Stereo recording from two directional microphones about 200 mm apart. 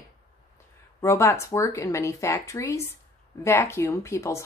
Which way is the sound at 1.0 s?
15° left (ahead or behind).